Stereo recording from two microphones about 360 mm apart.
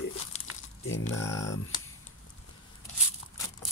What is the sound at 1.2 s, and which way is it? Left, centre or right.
Speech, centre.